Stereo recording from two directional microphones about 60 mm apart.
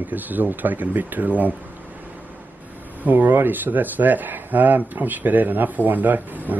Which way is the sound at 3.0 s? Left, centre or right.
Right.